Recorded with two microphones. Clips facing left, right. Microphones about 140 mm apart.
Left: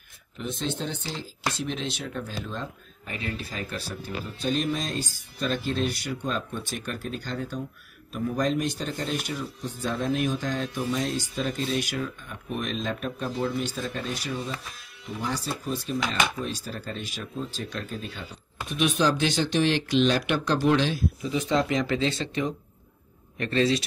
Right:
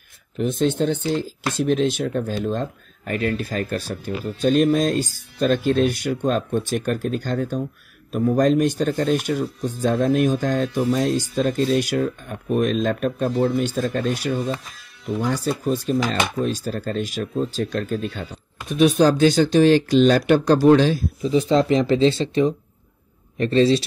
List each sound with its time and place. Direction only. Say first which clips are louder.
0.4 s speech: right 11 dB; 50° right (ahead or behind)
15.6 s speech: right 8 dB; 45° right (ahead or behind)